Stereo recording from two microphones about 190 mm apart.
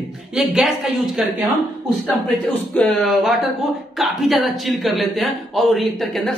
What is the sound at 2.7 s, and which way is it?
Speech, 5° left (ahead or behind).